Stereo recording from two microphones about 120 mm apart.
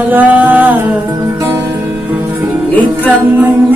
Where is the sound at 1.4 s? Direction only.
25° right (ahead or behind).